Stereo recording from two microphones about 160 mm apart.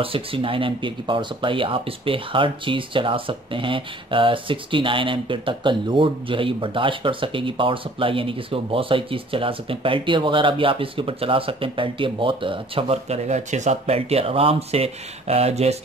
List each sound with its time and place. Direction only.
0.0 s speech: 35° right (ahead or behind)